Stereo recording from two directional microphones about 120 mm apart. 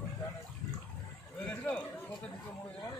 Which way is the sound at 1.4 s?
10° left (ahead or behind).